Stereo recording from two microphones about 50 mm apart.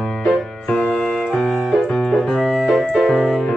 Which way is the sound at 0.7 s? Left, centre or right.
Left.